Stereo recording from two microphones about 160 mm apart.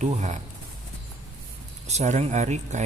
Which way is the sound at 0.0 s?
50° right (ahead or behind).